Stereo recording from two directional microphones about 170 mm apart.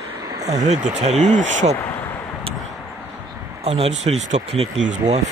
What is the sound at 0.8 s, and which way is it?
Speech, 40° right (ahead or behind).